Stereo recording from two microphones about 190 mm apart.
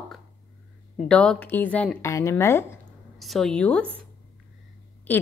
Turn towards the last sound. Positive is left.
turn(degrees=10)  # may be behind; listen again after turning